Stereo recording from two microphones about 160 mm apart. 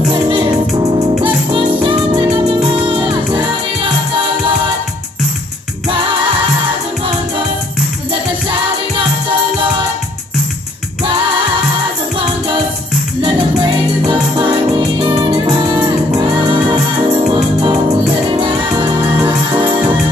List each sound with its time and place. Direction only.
0.1 s music: 30° right (ahead or behind)
8.1 s music: 30° right (ahead or behind)
13.2 s music: 30° right (ahead or behind)